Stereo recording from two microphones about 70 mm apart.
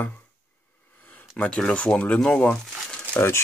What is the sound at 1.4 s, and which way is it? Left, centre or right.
Speech, centre.